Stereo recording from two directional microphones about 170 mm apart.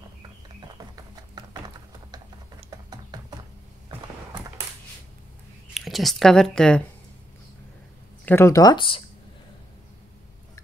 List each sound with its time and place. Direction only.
1.3 s typing: 25° right (ahead or behind)
2.9 s a sound: 25° right (ahead or behind)
5.8 s speech: centre (ahead or behind)
8.3 s speech: 15° left (ahead or behind)